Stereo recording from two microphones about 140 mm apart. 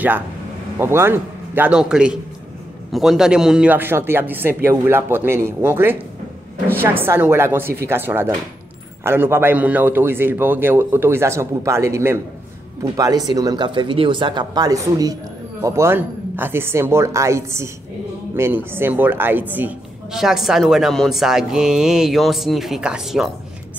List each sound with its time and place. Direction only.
0.7 s a man's voice: 15° right (ahead or behind)
20.2 s speech: centre (ahead or behind)